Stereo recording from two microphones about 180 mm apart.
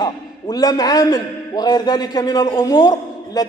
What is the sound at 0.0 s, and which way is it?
A man's voice, 20° left (ahead or behind).